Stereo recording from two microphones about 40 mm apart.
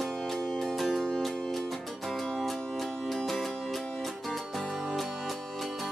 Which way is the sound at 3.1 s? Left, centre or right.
Centre.